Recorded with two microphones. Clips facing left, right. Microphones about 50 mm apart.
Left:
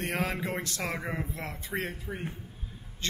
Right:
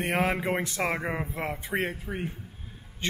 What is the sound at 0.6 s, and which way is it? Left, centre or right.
Speech, centre.